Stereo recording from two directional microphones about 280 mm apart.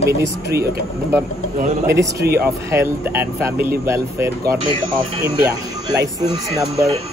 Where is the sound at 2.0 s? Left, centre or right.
Right.